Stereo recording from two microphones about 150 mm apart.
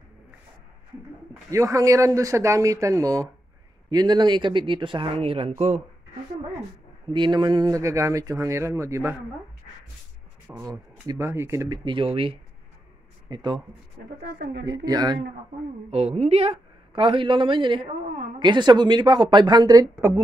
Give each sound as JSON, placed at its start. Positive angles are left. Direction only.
{"t": 1.5, "sound": "a woman's voice", "side_deg": -20}
{"t": 7.1, "sound": "speech", "side_deg": -30}
{"t": 10.5, "sound": "speech", "side_deg": -25}
{"t": 11.8, "sound": "a woman's voice", "side_deg": -35}
{"t": 14.2, "sound": "speech", "side_deg": -90}
{"t": 14.6, "sound": "speech", "side_deg": -25}
{"t": 15.9, "sound": "a woman's voice", "side_deg": -45}